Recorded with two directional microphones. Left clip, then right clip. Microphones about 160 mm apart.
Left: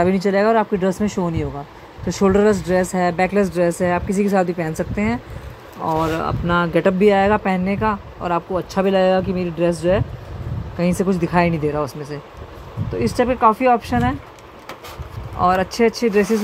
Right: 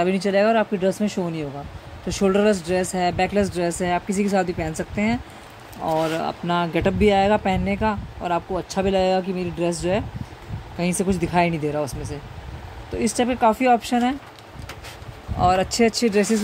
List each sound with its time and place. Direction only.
0.0 s speech: centre (ahead or behind)
15.3 s speech: 15° right (ahead or behind)